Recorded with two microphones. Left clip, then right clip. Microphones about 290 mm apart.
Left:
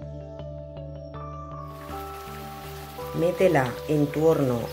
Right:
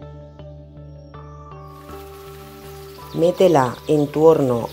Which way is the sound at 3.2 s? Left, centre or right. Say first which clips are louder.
Right 7 dB; centre.